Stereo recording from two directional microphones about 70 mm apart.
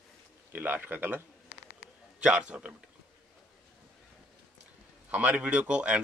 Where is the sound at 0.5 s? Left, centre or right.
Right.